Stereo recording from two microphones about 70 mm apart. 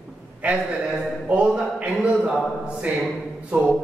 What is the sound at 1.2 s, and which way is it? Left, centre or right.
Speech, centre.